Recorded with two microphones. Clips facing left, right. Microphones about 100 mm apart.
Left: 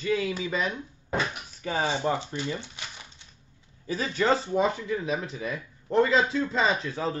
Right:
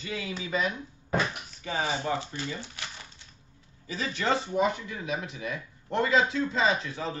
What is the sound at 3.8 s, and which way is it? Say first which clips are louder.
Speech: left 4 dB; 40° left (ahead or behind).